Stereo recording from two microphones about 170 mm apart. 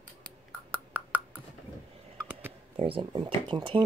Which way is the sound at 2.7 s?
35° right (ahead or behind).